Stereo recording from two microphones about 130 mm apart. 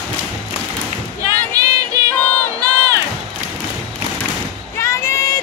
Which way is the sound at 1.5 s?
25° right (ahead or behind).